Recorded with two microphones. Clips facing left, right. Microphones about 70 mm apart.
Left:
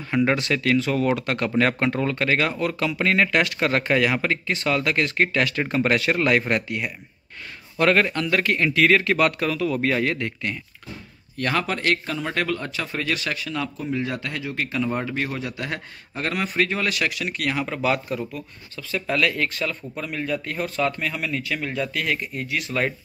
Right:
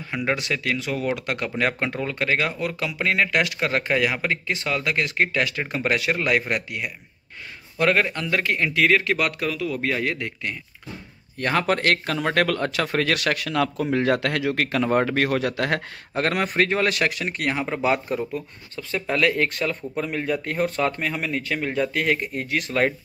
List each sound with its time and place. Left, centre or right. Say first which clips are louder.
0.1 s a man's voice: left 4 dB; centre
0.4 s a man's voice: left 5 dB; centre
8.6 s a man's voice: left 1 dB; centre
11.3 s speech: right 1 dB; right
11.6 s speech: right 3 dB; right
22.2 s speech: right 2 dB; right